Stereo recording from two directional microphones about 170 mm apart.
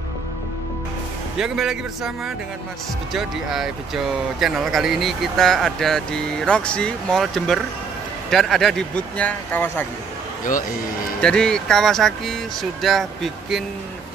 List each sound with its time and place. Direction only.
1.4 s speech: 5° right (ahead or behind)
11.1 s speech: 5° left (ahead or behind)